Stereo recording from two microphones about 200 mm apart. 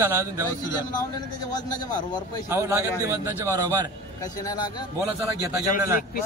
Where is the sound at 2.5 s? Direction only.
15° right (ahead or behind).